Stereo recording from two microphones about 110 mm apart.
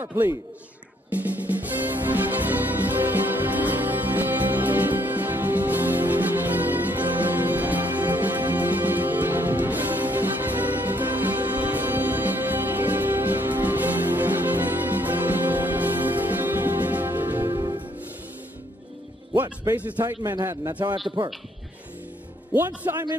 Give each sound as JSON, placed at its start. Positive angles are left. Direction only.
{"t": 0.0, "sound": "a man's voice", "side_deg": -25}
{"t": 1.1, "sound": "music", "side_deg": -15}
{"t": 17.6, "sound": "music", "side_deg": -35}
{"t": 19.7, "sound": "a man's voice", "side_deg": -15}
{"t": 21.2, "sound": "a man's voice", "side_deg": -50}
{"t": 22.8, "sound": "a man's voice", "side_deg": -25}